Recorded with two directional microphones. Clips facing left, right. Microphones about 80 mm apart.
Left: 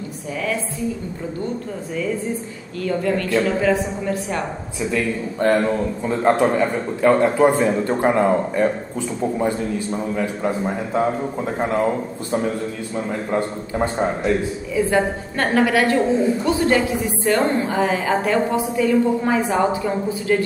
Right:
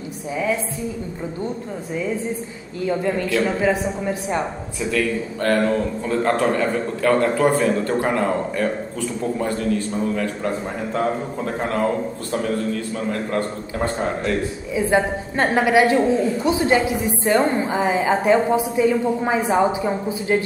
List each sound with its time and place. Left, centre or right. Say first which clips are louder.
2.8 s a woman's voice: even; centre
4.9 s a man's voice: even; centre
10.1 s a man's voice: left 1 dB; centre
14.7 s a woman's voice: even; centre